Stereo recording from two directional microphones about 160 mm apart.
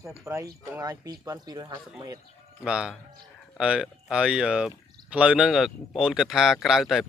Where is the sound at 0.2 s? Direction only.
20° right (ahead or behind).